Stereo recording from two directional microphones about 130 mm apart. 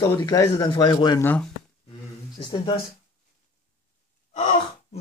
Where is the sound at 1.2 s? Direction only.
15° left (ahead or behind).